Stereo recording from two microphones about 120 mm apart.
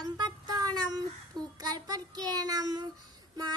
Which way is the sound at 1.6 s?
35° right (ahead or behind).